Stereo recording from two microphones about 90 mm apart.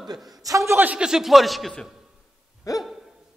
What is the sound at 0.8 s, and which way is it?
A woman's voice, 15° right (ahead or behind).